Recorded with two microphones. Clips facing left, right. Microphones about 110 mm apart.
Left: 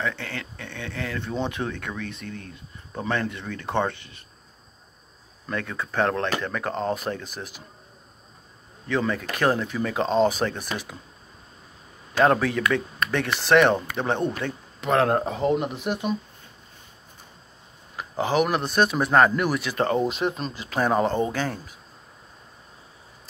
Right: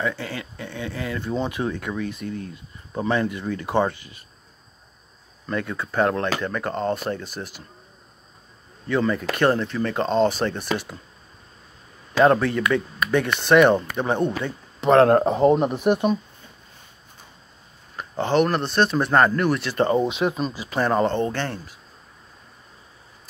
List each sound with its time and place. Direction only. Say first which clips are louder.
0.0 s speech: right 3 dB; 5° right (ahead or behind)
5.5 s speech: right 3 dB; centre (ahead or behind)
8.8 s speech: right 3 dB; centre (ahead or behind)
12.2 s speech: right 3 dB; centre (ahead or behind)
15.0 s speech: right 6 dB; 50° right (ahead or behind)
17.9 s speech: right 2 dB; 5° left (ahead or behind)